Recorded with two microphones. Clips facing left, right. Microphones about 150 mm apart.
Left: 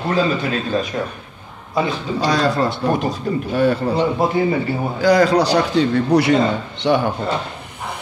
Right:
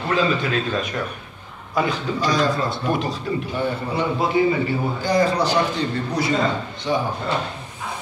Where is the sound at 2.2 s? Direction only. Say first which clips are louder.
Left 4 dB; 70° left (ahead or behind).